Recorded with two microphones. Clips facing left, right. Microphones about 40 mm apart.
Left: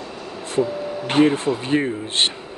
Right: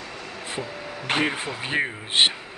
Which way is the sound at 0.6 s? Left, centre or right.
Centre.